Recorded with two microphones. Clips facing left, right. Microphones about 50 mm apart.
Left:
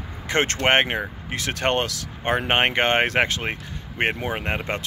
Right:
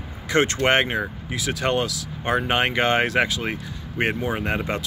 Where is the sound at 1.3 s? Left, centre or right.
Left.